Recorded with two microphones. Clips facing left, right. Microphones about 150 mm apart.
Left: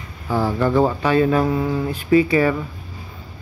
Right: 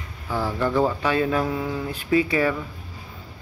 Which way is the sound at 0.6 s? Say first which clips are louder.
Left 3 dB; 5° left (ahead or behind).